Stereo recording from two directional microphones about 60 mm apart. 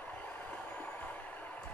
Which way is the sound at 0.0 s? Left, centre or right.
Left.